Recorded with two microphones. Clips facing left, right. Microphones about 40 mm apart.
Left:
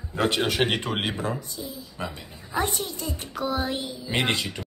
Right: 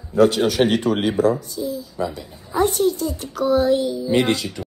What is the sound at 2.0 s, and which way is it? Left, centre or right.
Speech, left.